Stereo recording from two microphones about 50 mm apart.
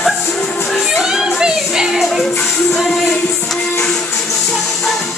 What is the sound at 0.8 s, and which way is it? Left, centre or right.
Speech, centre.